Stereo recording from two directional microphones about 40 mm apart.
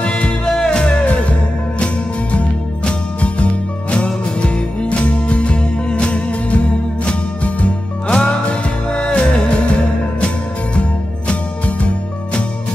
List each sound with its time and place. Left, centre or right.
0.0 s music: left
2.3 s music: left